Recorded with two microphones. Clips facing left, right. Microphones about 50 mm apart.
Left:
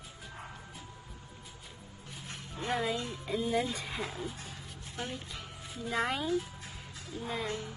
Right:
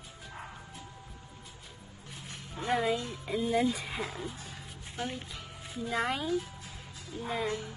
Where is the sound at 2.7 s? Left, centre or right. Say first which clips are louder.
Right 3 dB; centre.